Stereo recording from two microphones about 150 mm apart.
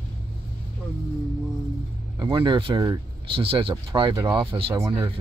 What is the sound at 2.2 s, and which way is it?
Speech, 30° right (ahead or behind).